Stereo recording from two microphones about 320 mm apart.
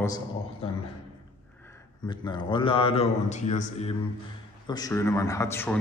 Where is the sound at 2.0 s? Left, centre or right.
Centre.